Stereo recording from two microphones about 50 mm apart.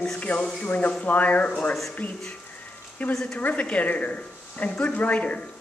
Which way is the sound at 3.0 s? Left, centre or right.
Left.